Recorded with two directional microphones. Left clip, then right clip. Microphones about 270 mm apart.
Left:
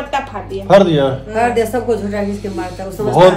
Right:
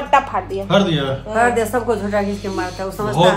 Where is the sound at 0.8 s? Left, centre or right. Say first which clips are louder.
Left 6 dB; centre.